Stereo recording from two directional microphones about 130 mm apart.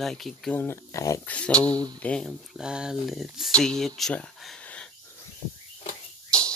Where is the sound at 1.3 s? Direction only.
10° left (ahead or behind).